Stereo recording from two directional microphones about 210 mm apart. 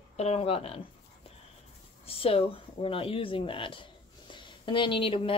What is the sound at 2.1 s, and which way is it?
Speech, 25° left (ahead or behind).